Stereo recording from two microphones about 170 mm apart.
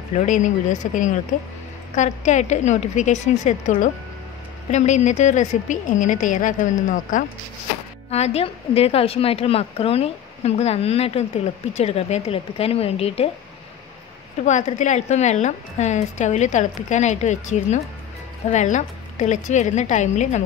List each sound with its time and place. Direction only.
0.1 s speech: 45° left (ahead or behind)
8.1 s a woman's voice: 35° left (ahead or behind)
14.4 s speech: 45° left (ahead or behind)